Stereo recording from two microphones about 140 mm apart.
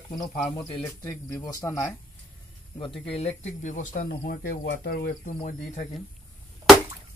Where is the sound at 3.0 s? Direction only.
50° left (ahead or behind); by 5.4 s 90° left.